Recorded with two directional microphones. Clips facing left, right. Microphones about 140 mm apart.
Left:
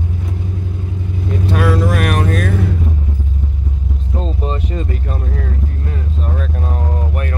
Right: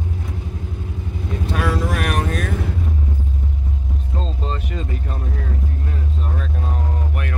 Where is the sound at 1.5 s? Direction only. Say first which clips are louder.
Left 6 dB; 65° left (ahead or behind).